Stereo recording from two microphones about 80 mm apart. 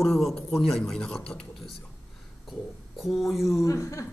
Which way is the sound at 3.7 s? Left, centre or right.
Left.